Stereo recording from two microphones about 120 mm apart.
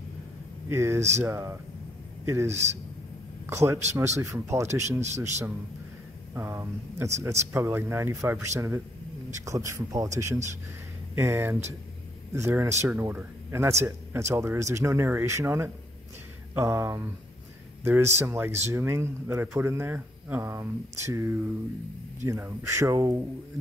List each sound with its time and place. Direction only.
0.7 s a man's voice: 25° right (ahead or behind)
2.5 s a man's voice: 70° right (ahead or behind)
3.4 s a man's voice: 20° right (ahead or behind)
6.3 s speech: 20° right (ahead or behind)